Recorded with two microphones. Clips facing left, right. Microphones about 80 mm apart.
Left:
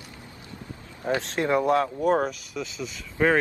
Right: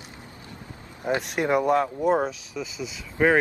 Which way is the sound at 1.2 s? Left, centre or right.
Centre.